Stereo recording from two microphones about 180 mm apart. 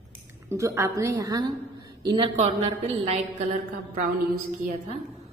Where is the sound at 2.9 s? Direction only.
40° right (ahead or behind).